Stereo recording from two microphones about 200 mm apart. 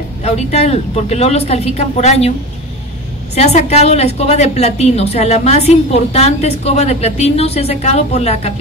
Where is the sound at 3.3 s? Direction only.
35° left (ahead or behind).